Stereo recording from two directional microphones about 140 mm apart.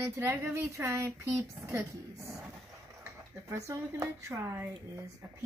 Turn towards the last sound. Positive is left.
turn(degrees=-15)  # may be behind; listen again after turning